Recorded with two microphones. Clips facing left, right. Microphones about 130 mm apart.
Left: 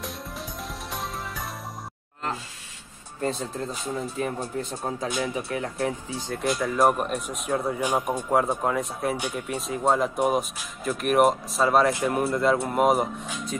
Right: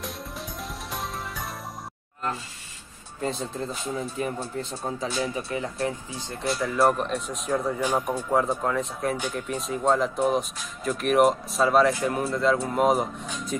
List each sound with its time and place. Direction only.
0.0 s music: centre (ahead or behind)
3.2 s speech: centre (ahead or behind)
4.4 s speech: 10° left (ahead or behind)
5.5 s speech: centre (ahead or behind)
6.0 s speech: 20° right (ahead or behind)
6.8 s speech: 10° left (ahead or behind)
11.9 s speech: 15° left (ahead or behind)